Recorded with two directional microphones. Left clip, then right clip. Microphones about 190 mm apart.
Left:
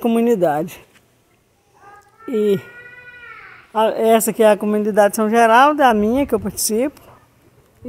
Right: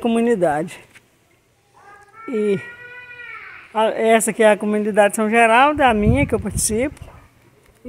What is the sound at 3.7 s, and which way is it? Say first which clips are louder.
A woman's voice: left 1 dB; 15° left (ahead or behind).